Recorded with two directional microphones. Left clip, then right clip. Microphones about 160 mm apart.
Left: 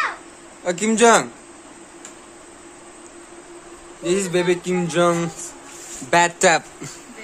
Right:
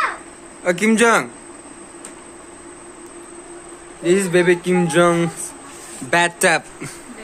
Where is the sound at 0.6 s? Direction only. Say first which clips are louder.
Right 1 dB; 10° left (ahead or behind).